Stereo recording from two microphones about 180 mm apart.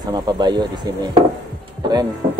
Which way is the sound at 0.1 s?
25° right (ahead or behind).